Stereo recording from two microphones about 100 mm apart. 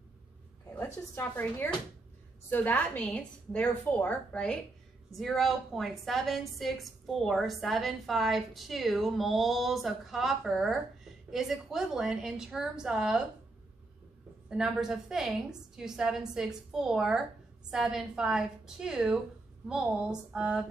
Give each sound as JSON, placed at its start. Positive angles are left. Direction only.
{"t": 0.7, "sound": "a woman's voice", "side_deg": 20}
{"t": 14.5, "sound": "a woman's voice", "side_deg": -5}